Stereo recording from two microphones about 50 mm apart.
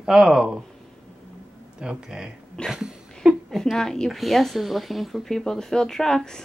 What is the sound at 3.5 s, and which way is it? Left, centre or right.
Speech, centre.